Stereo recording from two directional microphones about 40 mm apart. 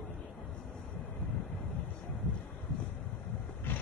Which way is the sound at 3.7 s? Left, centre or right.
Left.